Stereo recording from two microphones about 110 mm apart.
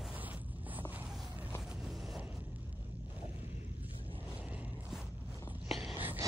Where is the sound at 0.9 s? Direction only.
15° right (ahead or behind).